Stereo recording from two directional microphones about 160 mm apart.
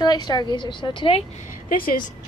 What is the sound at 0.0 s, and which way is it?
Speech, 25° left (ahead or behind).